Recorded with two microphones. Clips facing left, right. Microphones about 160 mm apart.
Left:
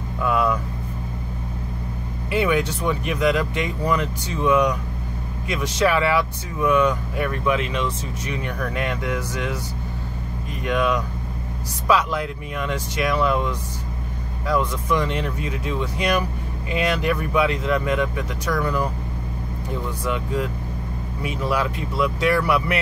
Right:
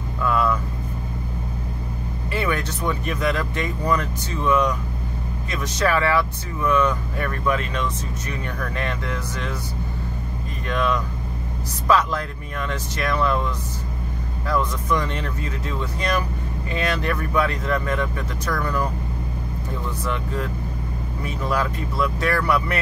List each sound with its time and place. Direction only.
0.2 s vehicle: 15° left (ahead or behind)
2.3 s speech: 15° left (ahead or behind)
8.7 s speech: 15° left (ahead or behind)
10.7 s speech: 15° left (ahead or behind)
15.0 s speech: 15° left (ahead or behind)
21.2 s speech: 10° left (ahead or behind)